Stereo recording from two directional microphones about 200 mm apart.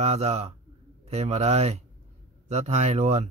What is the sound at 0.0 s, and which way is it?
Speech, 30° right (ahead or behind).